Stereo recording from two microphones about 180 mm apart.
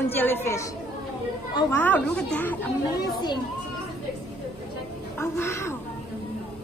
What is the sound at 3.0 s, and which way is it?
Speech, 25° left (ahead or behind).